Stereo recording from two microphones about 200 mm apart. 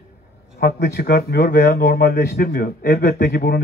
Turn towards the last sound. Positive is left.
turn(degrees=50)  # may be behind; listen again after turning